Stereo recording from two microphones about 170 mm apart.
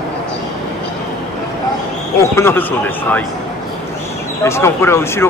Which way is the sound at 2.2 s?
15° left (ahead or behind).